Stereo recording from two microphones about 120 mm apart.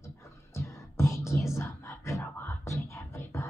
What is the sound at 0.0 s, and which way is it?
Whispering, 25° left (ahead or behind).